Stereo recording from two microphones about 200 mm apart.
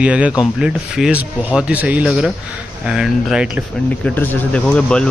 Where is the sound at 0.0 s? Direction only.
5° right (ahead or behind).